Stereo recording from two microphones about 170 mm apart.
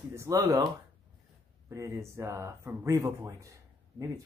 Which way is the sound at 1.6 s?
15° right (ahead or behind).